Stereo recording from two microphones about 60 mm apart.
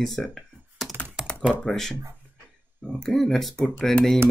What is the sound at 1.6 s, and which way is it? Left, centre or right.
Speech, centre.